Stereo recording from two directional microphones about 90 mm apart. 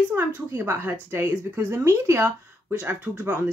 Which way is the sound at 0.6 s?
25° right (ahead or behind).